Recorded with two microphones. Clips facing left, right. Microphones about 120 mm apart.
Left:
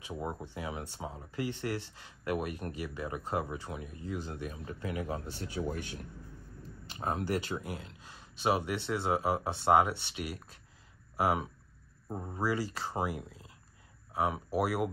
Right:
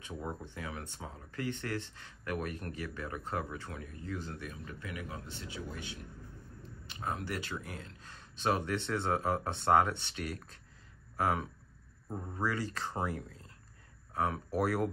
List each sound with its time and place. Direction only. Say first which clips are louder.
0.0 s speech: left 3 dB; 15° left (ahead or behind); by 5.2 s 30° left (ahead or behind)
5.2 s speech: left 7 dB; 45° left (ahead or behind)
6.9 s speech: left 5 dB; 35° left (ahead or behind)
7.5 s speech: left 4 dB; 15° left (ahead or behind)